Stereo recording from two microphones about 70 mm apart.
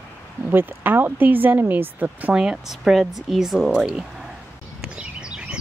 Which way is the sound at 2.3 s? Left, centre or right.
Centre.